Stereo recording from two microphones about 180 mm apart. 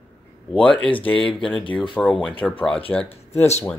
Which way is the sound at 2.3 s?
30° left (ahead or behind).